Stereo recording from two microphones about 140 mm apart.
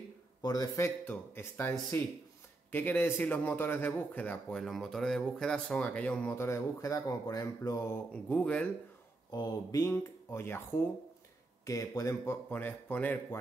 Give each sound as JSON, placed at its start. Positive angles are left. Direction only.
{"t": 0.4, "sound": "speech", "side_deg": 25}
{"t": 8.1, "sound": "speech", "side_deg": 10}
{"t": 9.3, "sound": "speech", "side_deg": 25}
{"t": 9.8, "sound": "speech", "side_deg": 15}